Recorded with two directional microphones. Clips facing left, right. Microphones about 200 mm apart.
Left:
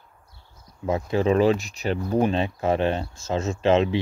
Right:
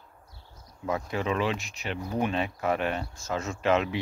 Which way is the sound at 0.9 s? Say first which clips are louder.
Left 7 dB; 25° left (ahead or behind).